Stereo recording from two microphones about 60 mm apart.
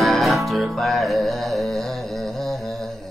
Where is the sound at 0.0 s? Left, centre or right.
Centre.